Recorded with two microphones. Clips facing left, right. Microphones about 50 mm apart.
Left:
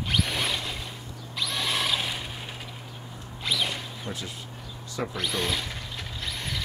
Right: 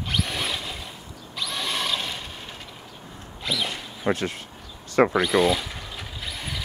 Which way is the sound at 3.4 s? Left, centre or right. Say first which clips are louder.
Right 1 dB; centre.